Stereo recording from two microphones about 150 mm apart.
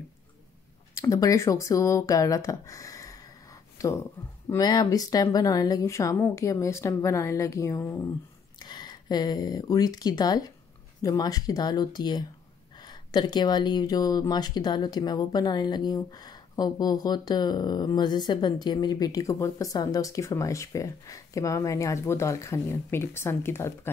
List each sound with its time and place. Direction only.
0.9 s speech: 20° left (ahead or behind)
3.7 s a sound: 20° left (ahead or behind)
4.5 s speech: 25° left (ahead or behind)